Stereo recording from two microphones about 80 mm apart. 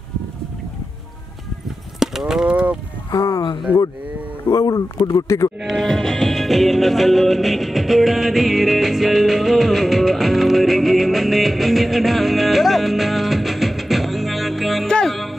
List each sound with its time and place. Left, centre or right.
2.0 s livestock: centre
2.5 s a sound: centre
3.1 s a sound: left
3.7 s speech: right
4.5 s speech: left
5.6 s music: centre